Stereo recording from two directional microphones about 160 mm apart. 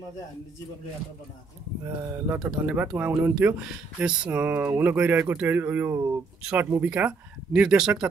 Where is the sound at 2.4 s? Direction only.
5° right (ahead or behind).